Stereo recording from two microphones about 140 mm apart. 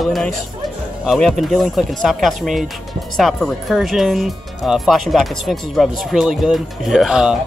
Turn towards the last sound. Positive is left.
turn(degrees=-5)  # may be behind; listen again after turning